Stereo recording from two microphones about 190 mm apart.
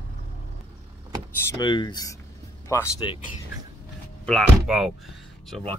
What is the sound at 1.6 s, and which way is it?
Speech, 25° left (ahead or behind).